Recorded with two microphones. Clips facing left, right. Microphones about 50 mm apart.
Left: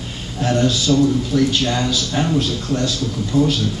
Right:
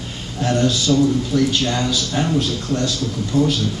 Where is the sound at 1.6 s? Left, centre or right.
Centre.